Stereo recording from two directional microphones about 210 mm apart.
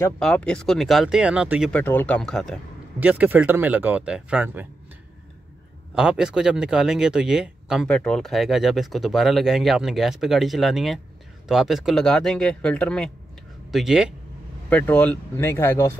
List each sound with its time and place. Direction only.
0.0 s speech: 5° left (ahead or behind)
1.7 s speech: 10° left (ahead or behind)
5.9 s speech: 5° right (ahead or behind)